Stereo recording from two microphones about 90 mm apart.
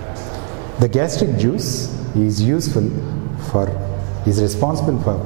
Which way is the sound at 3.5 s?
20° right (ahead or behind).